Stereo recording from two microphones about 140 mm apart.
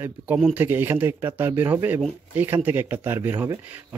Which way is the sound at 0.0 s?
10° right (ahead or behind).